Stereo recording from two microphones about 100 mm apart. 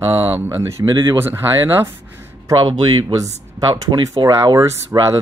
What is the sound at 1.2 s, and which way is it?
Speech, 25° right (ahead or behind).